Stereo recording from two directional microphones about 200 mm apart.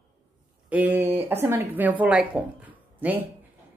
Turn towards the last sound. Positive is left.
turn(degrees=-10)  # may be behind; listen again after turning